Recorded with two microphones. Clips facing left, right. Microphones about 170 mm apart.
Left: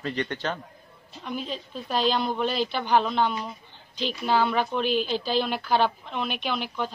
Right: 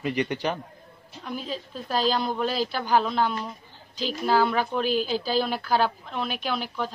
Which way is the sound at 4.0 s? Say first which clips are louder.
Even; 45° right (ahead or behind).